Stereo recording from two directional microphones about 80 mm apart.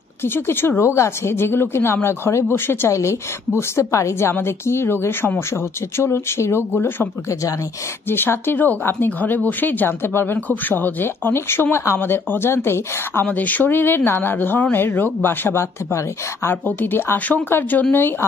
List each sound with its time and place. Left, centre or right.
0.2 s speech: left
8.1 s speech: left